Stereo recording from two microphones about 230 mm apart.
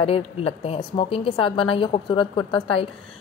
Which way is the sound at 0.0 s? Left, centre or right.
Left.